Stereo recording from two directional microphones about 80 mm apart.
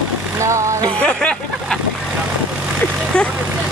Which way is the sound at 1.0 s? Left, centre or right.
Centre.